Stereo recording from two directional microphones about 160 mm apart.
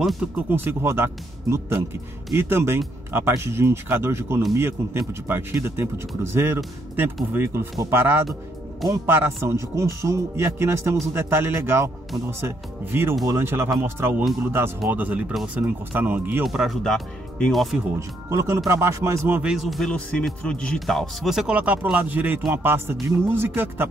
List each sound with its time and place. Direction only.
0.0 s speech: centre (ahead or behind)
0.5 s speech: 15° right (ahead or behind)
16.4 s speech: centre (ahead or behind)
17.9 s speech: 20° right (ahead or behind)
19.5 s speech: centre (ahead or behind)